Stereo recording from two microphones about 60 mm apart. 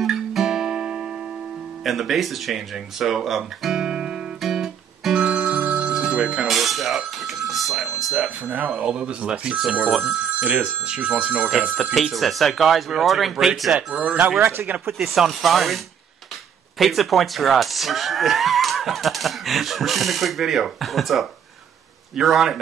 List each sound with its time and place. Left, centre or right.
0.0 s guitar: centre
1.9 s speech: centre
4.4 s guitar: centre
5.2 s music: right
5.6 s ringtone: right
5.9 s telephone bell ringing: centre
6.4 s speech: centre
7.2 s a sound: centre
8.6 s speech: centre
11.7 s speech: centre
13.7 s speech: right
14.9 s speech: centre